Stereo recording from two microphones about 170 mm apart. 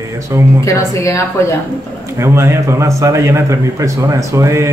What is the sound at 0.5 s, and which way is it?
Speech, 15° left (ahead or behind).